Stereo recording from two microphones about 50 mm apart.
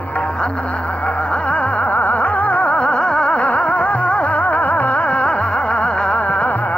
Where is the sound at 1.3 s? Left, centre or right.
Left.